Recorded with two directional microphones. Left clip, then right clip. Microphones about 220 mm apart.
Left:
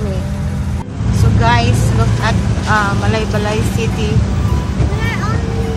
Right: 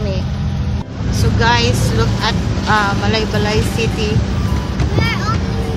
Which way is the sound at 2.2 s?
15° right (ahead or behind).